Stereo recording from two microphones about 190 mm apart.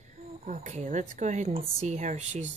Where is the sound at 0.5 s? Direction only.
40° right (ahead or behind).